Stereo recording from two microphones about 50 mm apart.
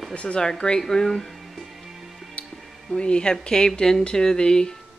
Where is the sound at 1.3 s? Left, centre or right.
Centre.